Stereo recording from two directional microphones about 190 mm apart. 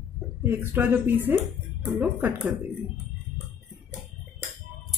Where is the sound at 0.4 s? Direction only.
10° right (ahead or behind).